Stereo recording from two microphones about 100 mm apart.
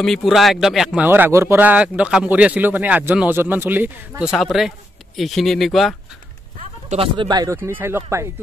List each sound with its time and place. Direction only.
0.0 s speech: centre (ahead or behind)
1.0 s speech: 20° right (ahead or behind)
1.6 s speech: 15° right (ahead or behind)
4.2 s speech: centre (ahead or behind)
7.2 s speech: 40° right (ahead or behind)
7.5 s speech: 25° right (ahead or behind)